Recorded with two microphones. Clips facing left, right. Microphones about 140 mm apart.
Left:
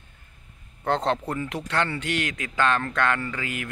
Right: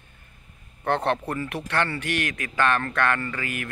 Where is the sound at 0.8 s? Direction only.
15° left (ahead or behind).